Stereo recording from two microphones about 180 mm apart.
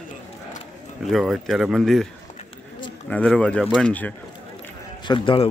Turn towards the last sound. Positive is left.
turn(degrees=30)  # may be behind; listen again after turning